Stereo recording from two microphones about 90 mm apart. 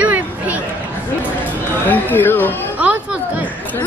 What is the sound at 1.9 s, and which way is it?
Speech, 20° left (ahead or behind).